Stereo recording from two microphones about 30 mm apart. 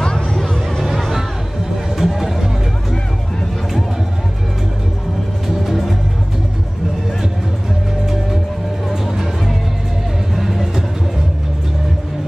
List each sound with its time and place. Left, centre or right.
0.0 s a sound: left
0.8 s music: centre
5.6 s music: centre
10.3 s music: centre